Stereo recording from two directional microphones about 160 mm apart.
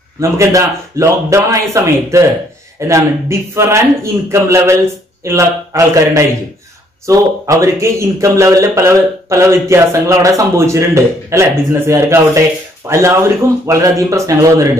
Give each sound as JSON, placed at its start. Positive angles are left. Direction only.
{"t": 0.2, "sound": "a man's voice", "side_deg": -20}